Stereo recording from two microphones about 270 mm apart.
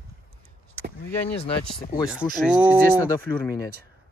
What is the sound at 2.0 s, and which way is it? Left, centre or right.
Speech, centre.